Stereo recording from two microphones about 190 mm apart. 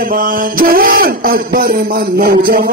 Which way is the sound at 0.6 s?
50° right (ahead or behind).